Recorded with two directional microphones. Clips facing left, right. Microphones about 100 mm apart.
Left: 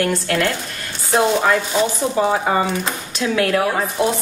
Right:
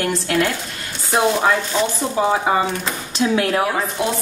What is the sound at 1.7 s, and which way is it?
Chopping, 10° left (ahead or behind).